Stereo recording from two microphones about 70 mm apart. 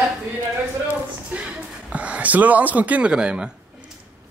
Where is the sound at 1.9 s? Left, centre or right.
Centre.